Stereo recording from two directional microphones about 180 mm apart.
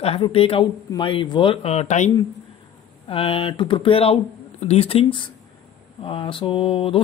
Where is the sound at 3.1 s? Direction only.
30° left (ahead or behind).